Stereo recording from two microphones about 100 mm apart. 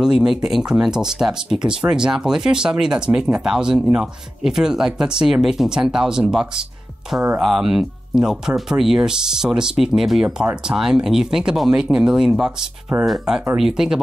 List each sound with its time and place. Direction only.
0.0 s speech: 5° right (ahead or behind)